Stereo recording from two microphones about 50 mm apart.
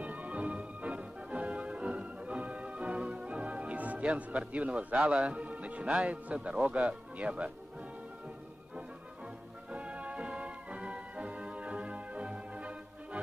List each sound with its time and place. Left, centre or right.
0.0 s music: right
9.7 s music: right